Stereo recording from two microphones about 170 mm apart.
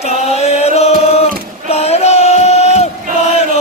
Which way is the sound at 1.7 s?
35° left (ahead or behind).